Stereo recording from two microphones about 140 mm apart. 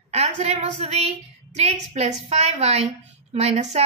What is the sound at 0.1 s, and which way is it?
A woman's voice, 50° right (ahead or behind).